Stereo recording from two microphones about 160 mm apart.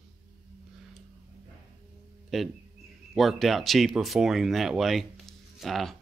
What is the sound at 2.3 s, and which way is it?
Speech, centre (ahead or behind).